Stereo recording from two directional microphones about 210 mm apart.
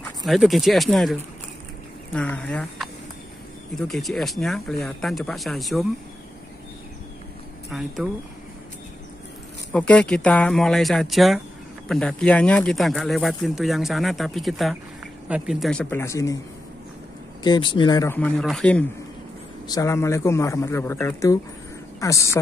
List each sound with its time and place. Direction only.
0.2 s speech: centre (ahead or behind)
2.1 s speech: 5° left (ahead or behind)
7.7 s speech: centre (ahead or behind)
9.7 s speech: 5° left (ahead or behind)
17.4 s speech: 20° left (ahead or behind); by 18.9 s 5° left (ahead or behind)
19.7 s a man's voice: 15° left (ahead or behind)